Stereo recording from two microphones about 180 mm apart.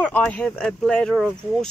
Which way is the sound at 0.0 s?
10° left (ahead or behind).